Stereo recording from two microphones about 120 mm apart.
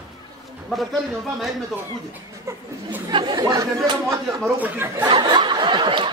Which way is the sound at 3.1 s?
40° right (ahead or behind).